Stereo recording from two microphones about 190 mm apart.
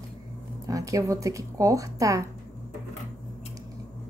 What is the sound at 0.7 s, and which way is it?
Speech, 15° right (ahead or behind).